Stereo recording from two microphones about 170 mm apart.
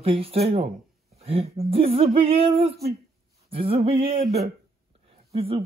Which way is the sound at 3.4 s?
35° right (ahead or behind).